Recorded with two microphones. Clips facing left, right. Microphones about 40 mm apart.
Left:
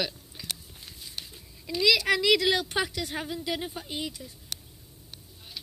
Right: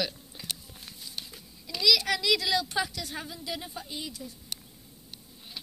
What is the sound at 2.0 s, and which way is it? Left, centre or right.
A woman's voice, left.